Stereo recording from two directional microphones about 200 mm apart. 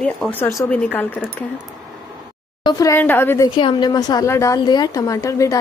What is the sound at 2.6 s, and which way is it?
Speech, 15° left (ahead or behind).